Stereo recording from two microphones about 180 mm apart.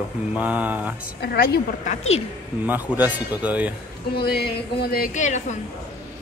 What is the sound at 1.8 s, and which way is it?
Speech, 35° left (ahead or behind).